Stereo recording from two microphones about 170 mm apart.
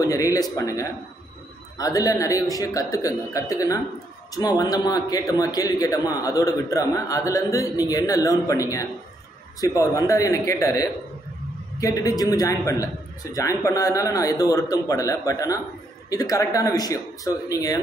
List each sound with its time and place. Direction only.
0.0 s a man's voice: 20° left (ahead or behind)